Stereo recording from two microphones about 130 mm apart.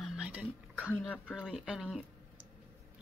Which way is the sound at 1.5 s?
5° right (ahead or behind).